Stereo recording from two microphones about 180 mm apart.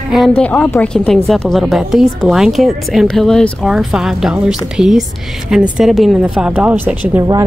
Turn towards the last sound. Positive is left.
turn(degrees=-20)  # may be behind; listen again after turning